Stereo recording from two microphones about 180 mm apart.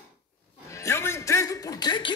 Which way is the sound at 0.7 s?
15° left (ahead or behind).